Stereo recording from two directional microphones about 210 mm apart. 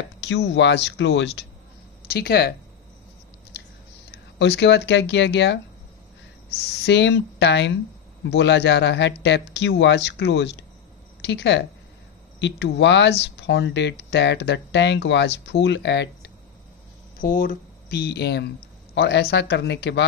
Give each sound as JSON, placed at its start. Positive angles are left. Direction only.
{"t": 0.2, "sound": "speech", "side_deg": 55}
{"t": 4.1, "sound": "speech", "side_deg": 55}
{"t": 6.6, "sound": "speech", "side_deg": 55}
{"t": 17.2, "sound": "speech", "side_deg": 40}